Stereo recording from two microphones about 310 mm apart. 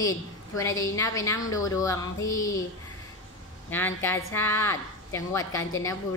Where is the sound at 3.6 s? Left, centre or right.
Centre.